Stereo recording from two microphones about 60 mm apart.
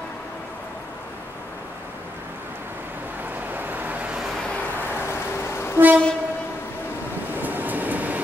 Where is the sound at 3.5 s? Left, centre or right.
Right.